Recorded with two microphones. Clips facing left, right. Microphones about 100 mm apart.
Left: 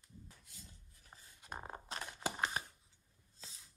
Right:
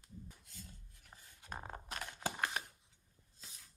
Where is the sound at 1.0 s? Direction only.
25° left (ahead or behind).